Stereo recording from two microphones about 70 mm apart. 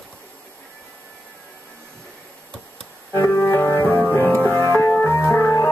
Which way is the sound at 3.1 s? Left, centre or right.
Left.